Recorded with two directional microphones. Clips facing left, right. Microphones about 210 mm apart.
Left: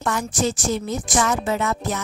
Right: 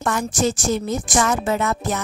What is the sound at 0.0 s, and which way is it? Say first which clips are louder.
A woman's voice: right 2 dB; 45° right (ahead or behind).